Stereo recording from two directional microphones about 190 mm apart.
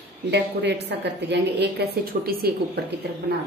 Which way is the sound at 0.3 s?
60° right (ahead or behind).